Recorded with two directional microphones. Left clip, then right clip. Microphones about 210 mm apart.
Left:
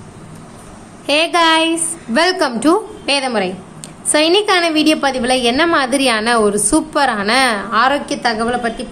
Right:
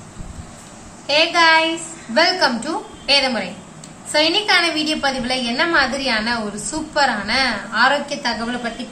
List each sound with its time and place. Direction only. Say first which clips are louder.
1.0 s a woman's voice: left 1 dB; 55° left (ahead or behind)